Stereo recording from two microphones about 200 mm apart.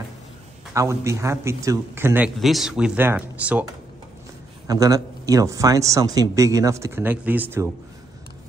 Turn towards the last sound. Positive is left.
turn(degrees=-10)  # may be behind; listen again after turning